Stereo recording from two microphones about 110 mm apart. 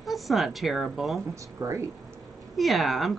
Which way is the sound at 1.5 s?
30° right (ahead or behind).